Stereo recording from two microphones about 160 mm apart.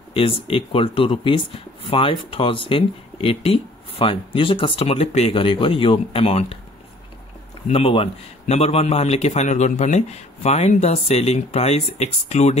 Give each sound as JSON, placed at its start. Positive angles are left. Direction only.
{"t": 0.1, "sound": "a man's voice", "side_deg": 35}
{"t": 7.6, "sound": "a man's voice", "side_deg": 35}